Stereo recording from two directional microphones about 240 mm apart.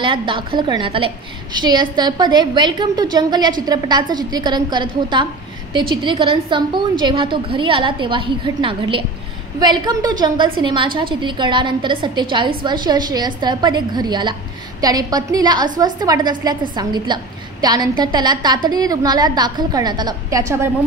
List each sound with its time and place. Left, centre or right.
0.0 s a woman's voice: right